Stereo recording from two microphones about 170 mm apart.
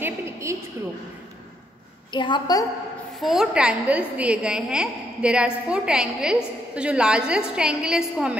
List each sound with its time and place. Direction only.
0.0 s a sound: 15° right (ahead or behind)
2.1 s a woman's voice: 25° left (ahead or behind)
3.2 s a woman's voice: centre (ahead or behind)